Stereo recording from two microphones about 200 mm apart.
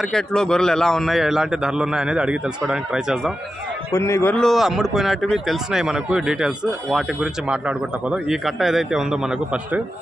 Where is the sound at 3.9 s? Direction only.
15° left (ahead or behind).